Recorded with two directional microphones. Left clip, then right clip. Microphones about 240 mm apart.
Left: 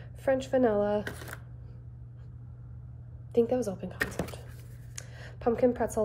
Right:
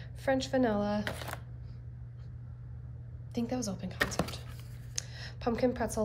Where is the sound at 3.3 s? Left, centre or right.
Centre.